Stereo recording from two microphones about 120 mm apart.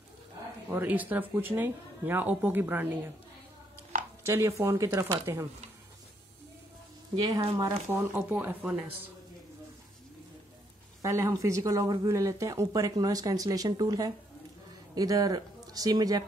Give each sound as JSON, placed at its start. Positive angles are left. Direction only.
{"t": 0.7, "sound": "speech", "side_deg": -15}
{"t": 4.3, "sound": "speech", "side_deg": -25}
{"t": 7.2, "sound": "speech", "side_deg": -30}
{"t": 7.9, "sound": "speech", "side_deg": -15}
{"t": 11.0, "sound": "speech", "side_deg": -25}